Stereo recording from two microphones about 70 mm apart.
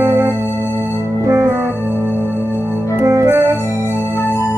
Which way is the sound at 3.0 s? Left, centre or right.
Right.